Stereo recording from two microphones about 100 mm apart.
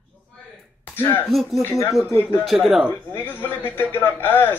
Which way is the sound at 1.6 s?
30° left (ahead or behind).